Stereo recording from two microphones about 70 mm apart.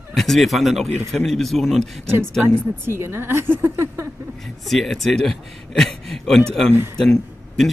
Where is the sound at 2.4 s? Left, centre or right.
Right.